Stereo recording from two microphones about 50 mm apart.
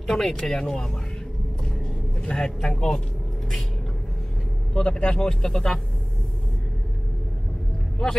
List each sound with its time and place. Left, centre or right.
0.0 s speech: centre
1.6 s vehicle: centre
4.7 s speech: left